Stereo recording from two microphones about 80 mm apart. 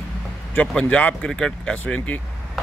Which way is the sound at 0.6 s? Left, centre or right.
Centre.